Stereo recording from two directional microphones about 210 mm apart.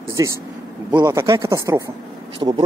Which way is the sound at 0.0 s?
15° right (ahead or behind).